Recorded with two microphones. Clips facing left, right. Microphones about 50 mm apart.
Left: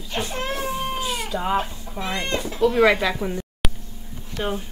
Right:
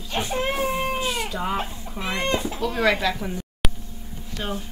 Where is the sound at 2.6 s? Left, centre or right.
Centre.